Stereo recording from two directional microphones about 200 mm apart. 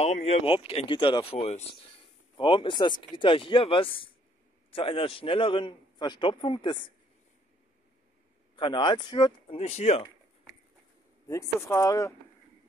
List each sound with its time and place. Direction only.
0.0 s a man's voice: 35° left (ahead or behind)
8.5 s a man's voice: 25° left (ahead or behind)
11.2 s speech: 15° left (ahead or behind)